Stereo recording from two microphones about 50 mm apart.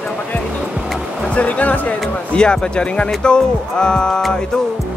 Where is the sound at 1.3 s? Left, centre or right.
Left.